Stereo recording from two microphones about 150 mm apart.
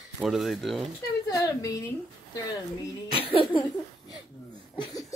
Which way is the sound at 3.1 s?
40° left (ahead or behind).